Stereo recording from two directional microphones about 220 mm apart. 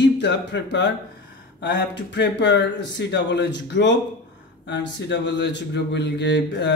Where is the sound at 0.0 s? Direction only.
55° left (ahead or behind).